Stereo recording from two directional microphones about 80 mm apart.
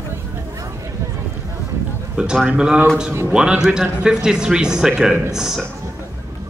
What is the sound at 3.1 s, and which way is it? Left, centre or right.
Speech, right.